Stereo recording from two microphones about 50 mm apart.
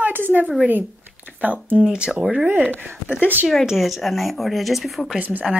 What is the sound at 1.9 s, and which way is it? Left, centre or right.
Speech, centre.